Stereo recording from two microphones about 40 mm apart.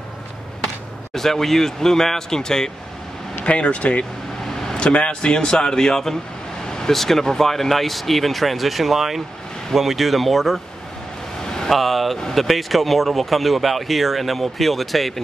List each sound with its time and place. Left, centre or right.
1.1 s speech: centre
3.4 s speech: left
4.5 s vehicle: centre
4.7 s speech: left; by 10.6 s centre
11.4 s vehicle: centre
11.7 s speech: centre